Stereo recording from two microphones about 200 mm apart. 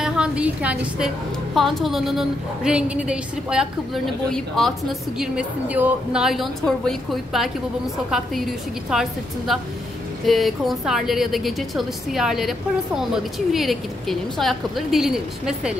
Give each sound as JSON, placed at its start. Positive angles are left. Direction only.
{"t": 0.0, "sound": "a woman's voice", "side_deg": -5}